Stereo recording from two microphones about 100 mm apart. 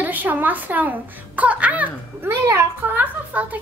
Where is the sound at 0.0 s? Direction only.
15° right (ahead or behind).